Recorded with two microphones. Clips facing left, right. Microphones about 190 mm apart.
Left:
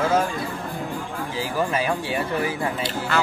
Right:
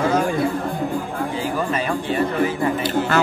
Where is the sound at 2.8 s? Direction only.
45° right (ahead or behind).